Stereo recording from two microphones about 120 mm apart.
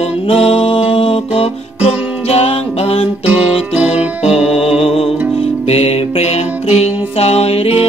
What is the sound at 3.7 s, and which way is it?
Music, 10° right (ahead or behind).